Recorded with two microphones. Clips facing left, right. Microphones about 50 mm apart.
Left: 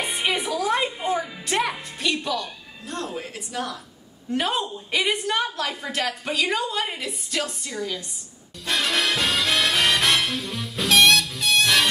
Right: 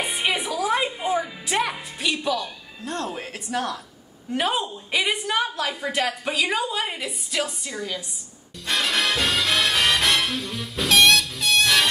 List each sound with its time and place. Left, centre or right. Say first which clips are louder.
0.0 s music: even; centre
3.2 s speech: right 2 dB; right
4.3 s a woman's voice: even; centre
8.6 s music: even; centre